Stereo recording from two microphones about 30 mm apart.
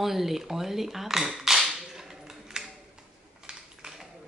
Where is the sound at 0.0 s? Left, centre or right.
Centre.